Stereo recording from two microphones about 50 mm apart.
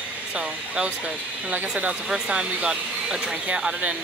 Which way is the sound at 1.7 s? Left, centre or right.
Centre.